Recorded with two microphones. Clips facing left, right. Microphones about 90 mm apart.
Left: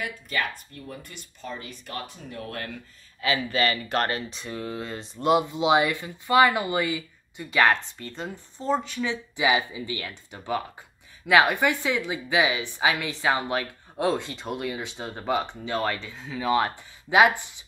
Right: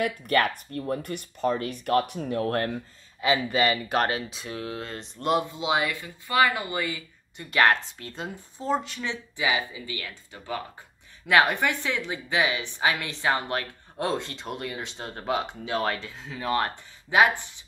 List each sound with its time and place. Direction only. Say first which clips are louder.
0.0 s speech: right 6 dB; 55° right (ahead or behind)
2.7 s speech: right 6 dB; 20° right (ahead or behind); by 5.4 s 10° left (ahead or behind)
5.5 s speech: left 5 dB; 20° left (ahead or behind)
7.5 s speech: even; centre (ahead or behind)
9.4 s speech: left 4 dB; 15° left (ahead or behind)